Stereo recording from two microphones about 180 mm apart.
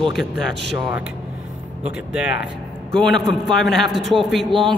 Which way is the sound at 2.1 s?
5° right (ahead or behind).